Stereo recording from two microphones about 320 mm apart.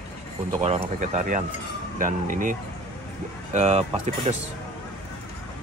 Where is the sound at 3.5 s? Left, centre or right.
Right.